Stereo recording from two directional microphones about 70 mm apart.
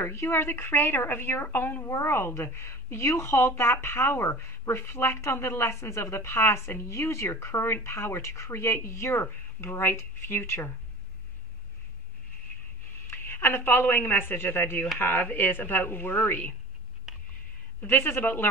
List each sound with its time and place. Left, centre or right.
0.0 s a woman's voice: left
13.1 s a woman's voice: left
17.1 s a sound: centre
17.8 s a woman's voice: left